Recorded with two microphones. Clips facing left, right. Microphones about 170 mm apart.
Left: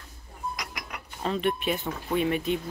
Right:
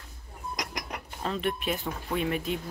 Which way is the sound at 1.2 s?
Centre (ahead or behind).